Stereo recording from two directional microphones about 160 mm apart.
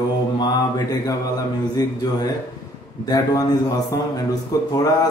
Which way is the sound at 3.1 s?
25° left (ahead or behind).